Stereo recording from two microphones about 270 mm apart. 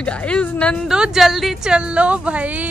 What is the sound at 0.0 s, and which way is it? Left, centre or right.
Speech, centre.